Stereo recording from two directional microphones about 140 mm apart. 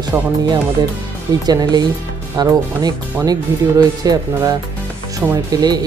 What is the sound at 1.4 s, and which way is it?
Speech, 30° right (ahead or behind).